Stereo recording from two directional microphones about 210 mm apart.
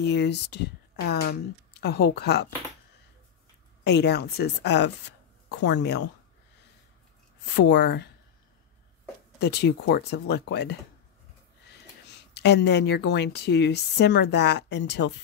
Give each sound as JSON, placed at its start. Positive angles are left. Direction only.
{"t": 0.0, "sound": "a woman's voice", "side_deg": 55}
{"t": 3.8, "sound": "a woman's voice", "side_deg": 55}
{"t": 7.4, "sound": "a woman's voice", "side_deg": 55}
{"t": 9.4, "sound": "a woman's voice", "side_deg": 55}
{"t": 12.4, "sound": "a woman's voice", "side_deg": 55}